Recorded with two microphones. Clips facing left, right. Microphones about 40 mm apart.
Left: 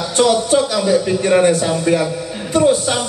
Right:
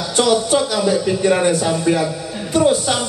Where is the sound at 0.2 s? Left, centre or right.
Left.